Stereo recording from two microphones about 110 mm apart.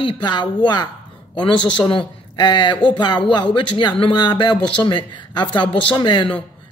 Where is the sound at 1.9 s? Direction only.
45° left (ahead or behind).